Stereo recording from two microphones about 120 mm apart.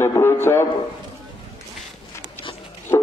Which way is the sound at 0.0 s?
20° left (ahead or behind).